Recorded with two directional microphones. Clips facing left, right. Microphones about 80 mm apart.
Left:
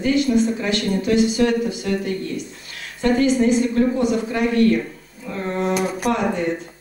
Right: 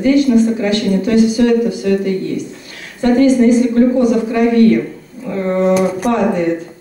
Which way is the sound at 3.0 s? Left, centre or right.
Right.